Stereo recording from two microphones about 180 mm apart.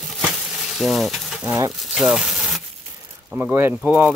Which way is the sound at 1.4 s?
15° right (ahead or behind).